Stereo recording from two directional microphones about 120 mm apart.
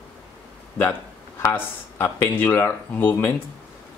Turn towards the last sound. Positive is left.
turn(degrees=20)  # may be behind; listen again after turning